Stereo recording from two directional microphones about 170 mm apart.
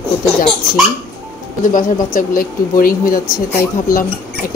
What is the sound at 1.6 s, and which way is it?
Speech, 50° left (ahead or behind).